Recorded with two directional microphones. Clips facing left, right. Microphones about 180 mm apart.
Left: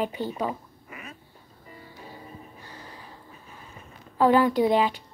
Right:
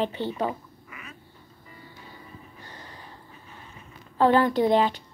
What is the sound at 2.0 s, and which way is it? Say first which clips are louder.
Music: left 7 dB; 35° left (ahead or behind).